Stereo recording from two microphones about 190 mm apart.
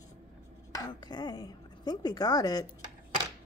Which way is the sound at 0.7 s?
20° left (ahead or behind).